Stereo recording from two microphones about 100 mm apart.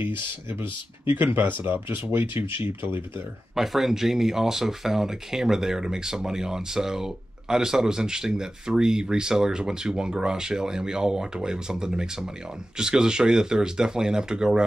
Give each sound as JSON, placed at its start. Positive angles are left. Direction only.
{"t": 0.0, "sound": "speech", "side_deg": -25}
{"t": 3.5, "sound": "speech", "side_deg": 0}